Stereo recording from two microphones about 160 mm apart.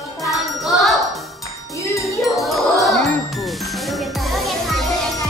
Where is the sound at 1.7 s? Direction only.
20° left (ahead or behind).